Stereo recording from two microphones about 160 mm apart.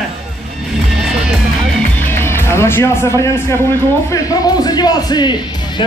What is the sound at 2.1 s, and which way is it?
Speech, 15° left (ahead or behind).